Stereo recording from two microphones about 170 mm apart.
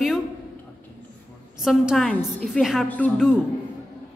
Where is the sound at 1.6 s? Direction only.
Centre (ahead or behind).